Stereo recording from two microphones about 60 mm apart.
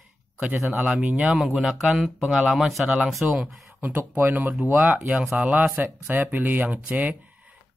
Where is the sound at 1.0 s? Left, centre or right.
Right.